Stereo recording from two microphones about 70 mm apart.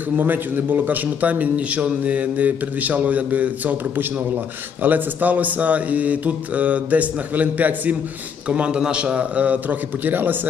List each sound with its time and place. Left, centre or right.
0.2 s a man's voice: right